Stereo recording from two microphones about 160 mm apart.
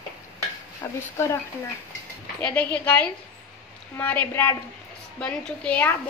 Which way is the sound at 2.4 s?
10° left (ahead or behind).